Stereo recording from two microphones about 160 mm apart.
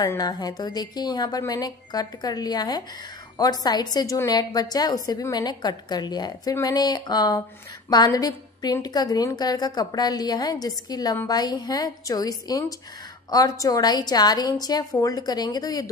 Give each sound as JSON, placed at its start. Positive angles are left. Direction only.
{"t": 0.0, "sound": "a woman's voice", "side_deg": 25}